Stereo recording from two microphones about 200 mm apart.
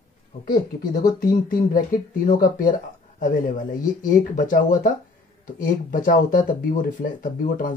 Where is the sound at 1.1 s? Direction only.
45° left (ahead or behind).